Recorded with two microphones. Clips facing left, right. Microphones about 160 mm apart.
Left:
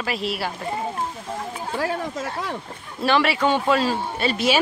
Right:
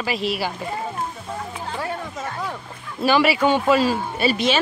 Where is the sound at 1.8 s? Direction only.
90° left.